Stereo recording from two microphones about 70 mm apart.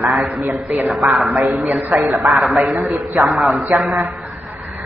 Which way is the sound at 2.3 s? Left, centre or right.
Centre.